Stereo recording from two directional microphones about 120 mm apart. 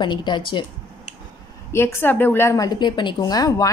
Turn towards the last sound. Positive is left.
turn(degrees=30)  # may be behind; listen again after turning